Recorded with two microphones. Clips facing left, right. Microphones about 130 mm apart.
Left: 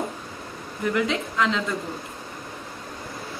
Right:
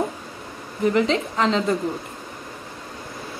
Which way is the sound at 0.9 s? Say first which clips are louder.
Right 1 dB; 35° right (ahead or behind).